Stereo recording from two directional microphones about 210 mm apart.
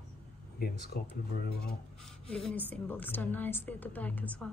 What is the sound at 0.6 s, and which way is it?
Speech, 45° left (ahead or behind).